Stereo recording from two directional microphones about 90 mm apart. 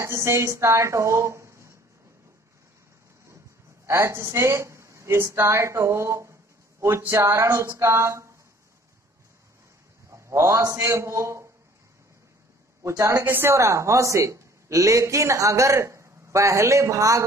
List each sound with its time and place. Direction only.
0.0 s speech: 30° right (ahead or behind)
3.8 s a woman's voice: 35° right (ahead or behind)
10.1 s a sound: 30° right (ahead or behind)
10.6 s a woman's voice: 35° right (ahead or behind)
12.8 s a woman's voice: 35° right (ahead or behind)
13.2 s a woman's voice: 25° right (ahead or behind)